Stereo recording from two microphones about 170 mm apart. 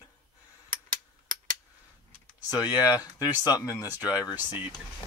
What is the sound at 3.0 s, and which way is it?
Speech, 20° left (ahead or behind).